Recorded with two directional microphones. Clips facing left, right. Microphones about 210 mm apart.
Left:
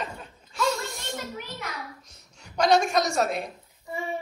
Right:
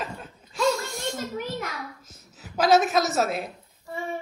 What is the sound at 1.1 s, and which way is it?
Speech, 50° right (ahead or behind).